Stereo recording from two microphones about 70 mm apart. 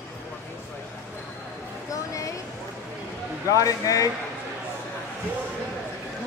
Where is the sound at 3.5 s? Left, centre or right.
Left.